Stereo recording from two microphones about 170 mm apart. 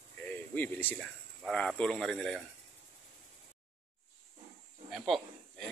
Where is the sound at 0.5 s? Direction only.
10° left (ahead or behind).